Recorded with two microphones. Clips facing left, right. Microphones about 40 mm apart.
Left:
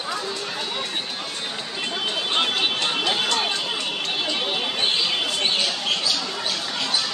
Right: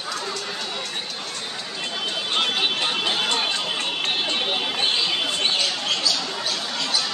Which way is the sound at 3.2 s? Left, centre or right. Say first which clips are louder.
Even; centre.